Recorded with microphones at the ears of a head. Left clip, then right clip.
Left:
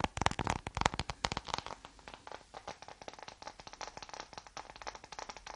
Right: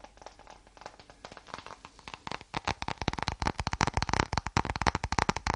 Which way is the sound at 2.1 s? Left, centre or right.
Right.